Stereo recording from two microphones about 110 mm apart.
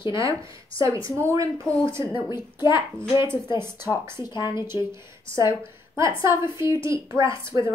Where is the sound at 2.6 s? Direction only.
45° left (ahead or behind).